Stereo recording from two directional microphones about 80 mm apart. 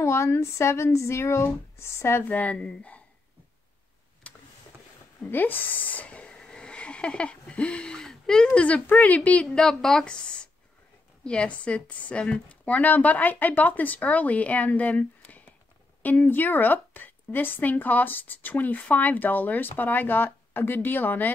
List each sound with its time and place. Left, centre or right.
0.0 s speech: left
2.2 s a woman's voice: left
4.2 s vehicle: centre
5.2 s speech: left
9.5 s a woman's voice: centre; by 21.3 s left